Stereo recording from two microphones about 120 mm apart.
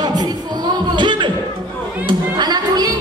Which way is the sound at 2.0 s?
35° right (ahead or behind).